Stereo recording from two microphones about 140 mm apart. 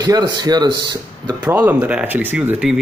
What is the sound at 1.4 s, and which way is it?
Speech, 10° right (ahead or behind).